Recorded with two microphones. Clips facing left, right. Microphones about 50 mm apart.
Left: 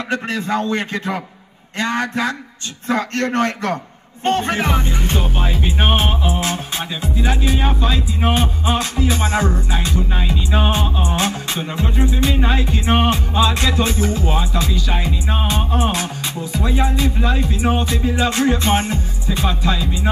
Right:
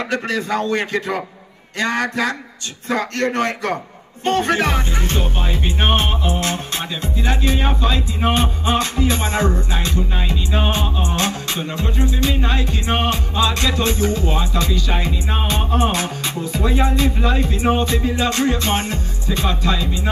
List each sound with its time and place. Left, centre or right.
1.8 s speech: left
5.1 s music: centre
11.7 s music: centre